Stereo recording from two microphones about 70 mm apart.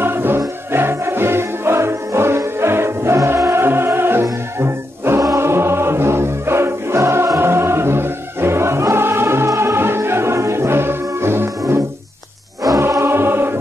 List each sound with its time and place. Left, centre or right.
0.0 s music: right
12.6 s music: right
13.0 s music: right